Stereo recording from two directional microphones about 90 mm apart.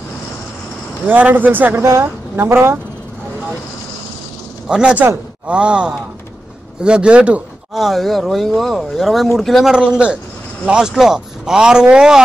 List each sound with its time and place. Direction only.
1.0 s a woman's voice: 20° right (ahead or behind)
4.6 s speech: 10° right (ahead or behind)
7.7 s speech: centre (ahead or behind)